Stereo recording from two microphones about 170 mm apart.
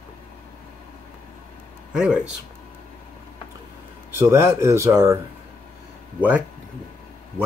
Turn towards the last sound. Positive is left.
turn(degrees=-10)  # may be behind; listen again after turning